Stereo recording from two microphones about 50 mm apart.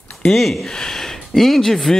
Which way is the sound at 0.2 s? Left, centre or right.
Centre.